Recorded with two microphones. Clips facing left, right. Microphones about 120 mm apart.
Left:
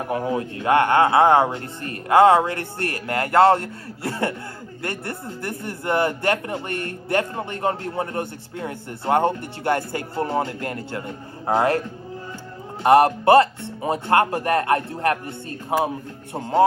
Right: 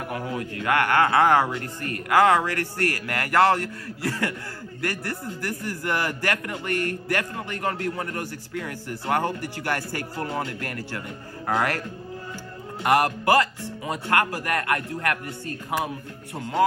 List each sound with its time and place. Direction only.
0.0 s a man's voice: 30° left (ahead or behind)
12.8 s a man's voice: 30° left (ahead or behind)